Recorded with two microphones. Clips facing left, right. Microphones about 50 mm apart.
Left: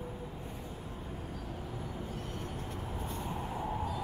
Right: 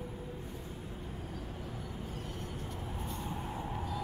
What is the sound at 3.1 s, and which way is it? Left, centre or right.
Vehicle, centre.